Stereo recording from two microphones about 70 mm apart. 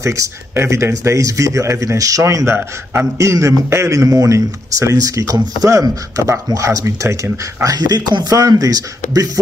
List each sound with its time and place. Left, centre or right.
0.0 s a man's voice: right
7.6 s speech: right
8.4 s speech: right